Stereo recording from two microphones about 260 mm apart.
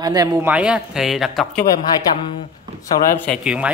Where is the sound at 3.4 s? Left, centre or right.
Centre.